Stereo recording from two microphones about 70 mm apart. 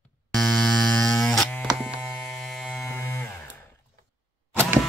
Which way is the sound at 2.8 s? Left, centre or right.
Left.